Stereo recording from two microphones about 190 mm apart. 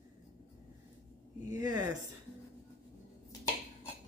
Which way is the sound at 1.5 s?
15° right (ahead or behind).